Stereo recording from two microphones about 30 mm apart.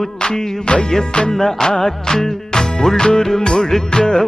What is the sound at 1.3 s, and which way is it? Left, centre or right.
Music, centre.